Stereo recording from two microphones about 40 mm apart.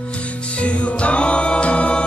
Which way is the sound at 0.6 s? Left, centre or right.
Left.